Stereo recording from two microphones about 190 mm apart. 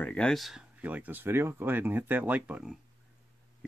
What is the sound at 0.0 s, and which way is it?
Speech, 5° left (ahead or behind).